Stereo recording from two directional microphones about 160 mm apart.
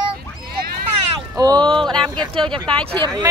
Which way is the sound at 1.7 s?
5° left (ahead or behind).